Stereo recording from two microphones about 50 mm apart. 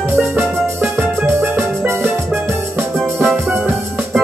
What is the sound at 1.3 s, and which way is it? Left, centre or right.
Music, right.